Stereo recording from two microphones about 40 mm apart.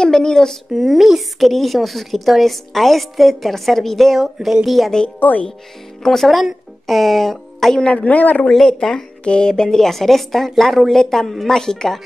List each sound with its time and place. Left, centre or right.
0.0 s speech: centre
0.7 s a woman's voice: centre
6.0 s a woman's voice: centre
7.9 s a woman's voice: left
9.2 s a woman's voice: left